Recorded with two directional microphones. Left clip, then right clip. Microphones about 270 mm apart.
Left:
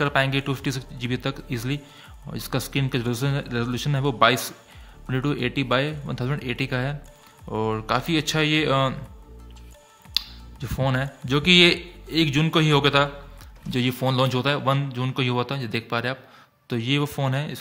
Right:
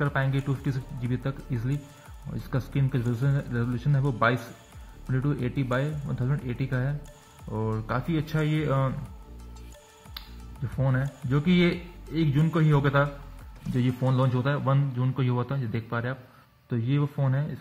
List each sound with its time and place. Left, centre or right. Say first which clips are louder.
0.0 s a man's voice: left 7 dB; left
10.6 s a man's voice: left 6 dB; left